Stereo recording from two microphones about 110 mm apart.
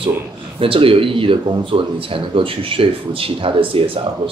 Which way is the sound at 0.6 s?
55° right (ahead or behind).